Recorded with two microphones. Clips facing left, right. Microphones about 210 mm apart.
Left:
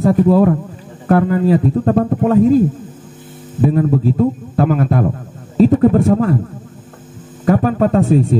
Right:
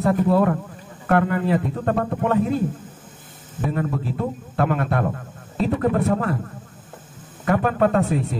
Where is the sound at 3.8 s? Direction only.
35° left (ahead or behind).